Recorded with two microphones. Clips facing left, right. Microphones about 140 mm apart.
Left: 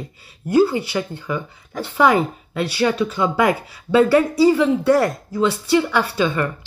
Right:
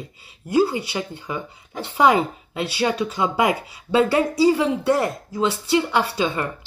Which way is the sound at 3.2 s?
15° right (ahead or behind).